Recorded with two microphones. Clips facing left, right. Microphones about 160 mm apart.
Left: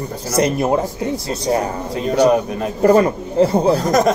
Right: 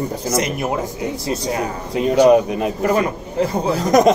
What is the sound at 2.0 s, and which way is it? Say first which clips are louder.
Speech: right 3 dB; 15° right (ahead or behind).